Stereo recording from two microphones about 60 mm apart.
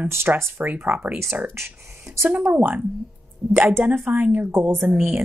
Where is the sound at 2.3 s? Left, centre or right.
Right.